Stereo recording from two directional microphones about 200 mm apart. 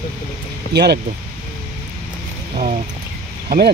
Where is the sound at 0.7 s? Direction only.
55° right (ahead or behind).